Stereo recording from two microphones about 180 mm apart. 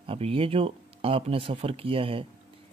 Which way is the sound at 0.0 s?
30° right (ahead or behind).